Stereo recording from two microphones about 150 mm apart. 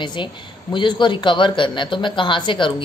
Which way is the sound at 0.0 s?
30° left (ahead or behind).